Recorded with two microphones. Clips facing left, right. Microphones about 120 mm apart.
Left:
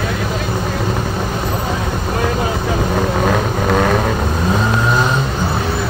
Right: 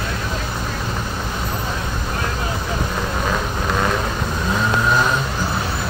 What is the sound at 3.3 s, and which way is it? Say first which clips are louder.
Vehicle: left 6 dB; 60° left (ahead or behind).